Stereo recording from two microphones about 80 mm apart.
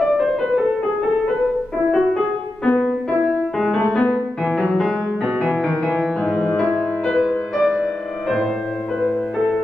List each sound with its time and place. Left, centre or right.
1.9 s music: centre
7.2 s music: centre